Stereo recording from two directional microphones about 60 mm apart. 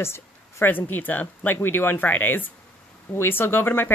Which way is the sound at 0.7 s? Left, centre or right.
Left.